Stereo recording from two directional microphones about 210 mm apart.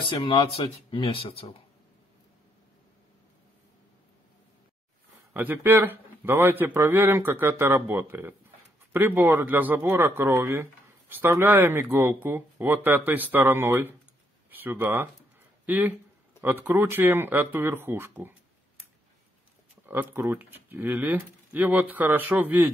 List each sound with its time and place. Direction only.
0.0 s speech: 25° left (ahead or behind)
5.3 s speech: 10° right (ahead or behind)
19.9 s speech: 10° right (ahead or behind)